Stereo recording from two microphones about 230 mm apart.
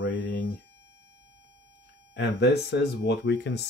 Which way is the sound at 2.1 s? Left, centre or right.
Left.